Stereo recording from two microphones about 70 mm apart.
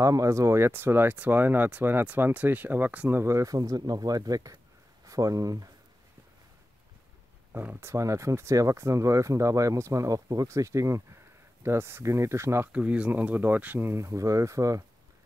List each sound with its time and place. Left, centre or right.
0.0 s speech: right
3.1 s speech: right
7.5 s speech: right
7.9 s speech: right
12.7 s speech: centre
13.9 s speech: right